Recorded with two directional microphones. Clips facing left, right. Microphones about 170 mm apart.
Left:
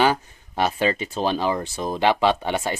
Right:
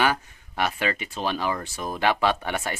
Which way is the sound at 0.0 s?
30° left (ahead or behind).